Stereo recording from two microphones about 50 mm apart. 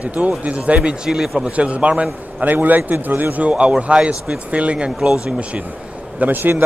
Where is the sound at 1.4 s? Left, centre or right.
Right.